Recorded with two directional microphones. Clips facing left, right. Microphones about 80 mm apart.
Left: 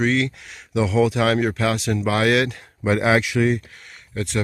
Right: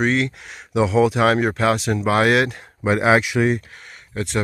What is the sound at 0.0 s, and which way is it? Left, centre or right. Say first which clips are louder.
Speech: right 1 dB; right.